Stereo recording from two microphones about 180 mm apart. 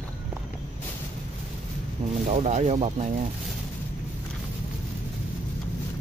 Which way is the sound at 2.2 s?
40° right (ahead or behind).